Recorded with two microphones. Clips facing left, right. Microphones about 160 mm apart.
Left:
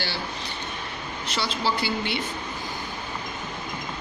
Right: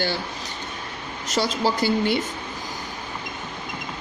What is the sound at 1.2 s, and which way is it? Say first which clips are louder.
Speech: right 5 dB; 45° right (ahead or behind).